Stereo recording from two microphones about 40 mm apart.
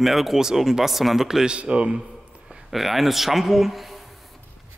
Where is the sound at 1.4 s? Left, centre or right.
Right.